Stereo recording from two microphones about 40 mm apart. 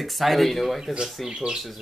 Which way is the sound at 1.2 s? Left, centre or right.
Centre.